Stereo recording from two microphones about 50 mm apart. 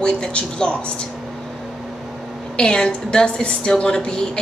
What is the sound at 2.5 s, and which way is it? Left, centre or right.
A woman's voice, centre.